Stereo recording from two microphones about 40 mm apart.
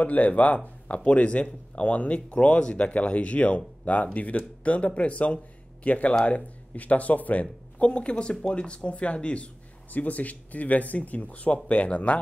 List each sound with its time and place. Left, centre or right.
0.0 s speech: left
7.8 s speech: left
9.9 s speech: left